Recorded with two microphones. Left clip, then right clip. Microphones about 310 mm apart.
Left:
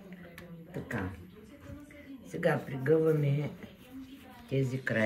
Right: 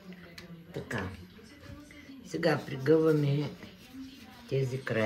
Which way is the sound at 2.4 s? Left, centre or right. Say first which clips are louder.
Right 2 dB; centre.